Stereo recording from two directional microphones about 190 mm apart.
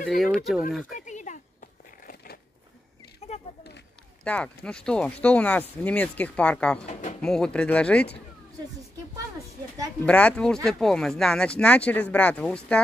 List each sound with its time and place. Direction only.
0.1 s speech: centre (ahead or behind)
0.9 s a sound: 40° left (ahead or behind)
4.2 s speech: 5° left (ahead or behind)
6.9 s speech: 35° left (ahead or behind)
7.2 s speech: 5° left (ahead or behind)
10.0 s speech: 5° left (ahead or behind)